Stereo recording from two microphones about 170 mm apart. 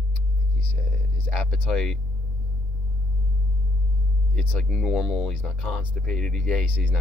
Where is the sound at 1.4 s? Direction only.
Centre (ahead or behind).